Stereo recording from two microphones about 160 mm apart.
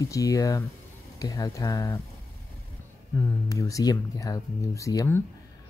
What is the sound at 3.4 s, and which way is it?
Speech, 20° left (ahead or behind).